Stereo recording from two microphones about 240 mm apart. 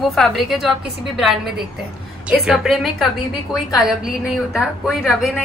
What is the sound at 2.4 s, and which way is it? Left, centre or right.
Speech, centre.